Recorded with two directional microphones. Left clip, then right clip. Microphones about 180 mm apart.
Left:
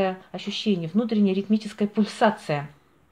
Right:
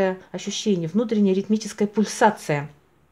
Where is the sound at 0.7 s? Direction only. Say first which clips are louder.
Right 3 dB; 25° right (ahead or behind).